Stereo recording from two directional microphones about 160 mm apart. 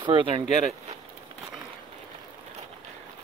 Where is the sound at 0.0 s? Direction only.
30° right (ahead or behind).